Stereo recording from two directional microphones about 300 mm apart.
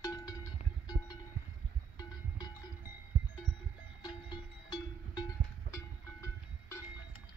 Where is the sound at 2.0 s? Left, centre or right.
Centre.